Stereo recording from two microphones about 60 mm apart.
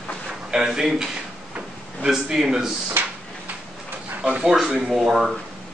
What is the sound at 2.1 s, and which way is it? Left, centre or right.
Speech, centre.